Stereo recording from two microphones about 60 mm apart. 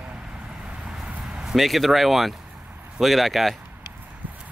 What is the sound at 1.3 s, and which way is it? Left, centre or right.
Speech, centre.